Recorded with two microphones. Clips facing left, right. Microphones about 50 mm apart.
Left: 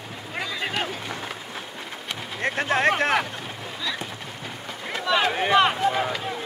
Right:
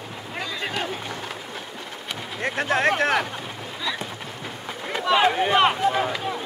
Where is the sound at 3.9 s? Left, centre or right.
Centre.